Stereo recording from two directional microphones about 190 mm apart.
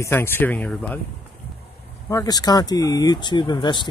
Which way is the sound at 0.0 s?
10° left (ahead or behind).